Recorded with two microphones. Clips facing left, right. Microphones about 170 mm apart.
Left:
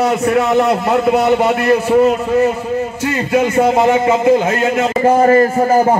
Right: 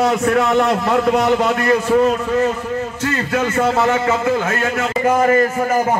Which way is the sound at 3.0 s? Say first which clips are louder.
Left 5 dB; 15° left (ahead or behind).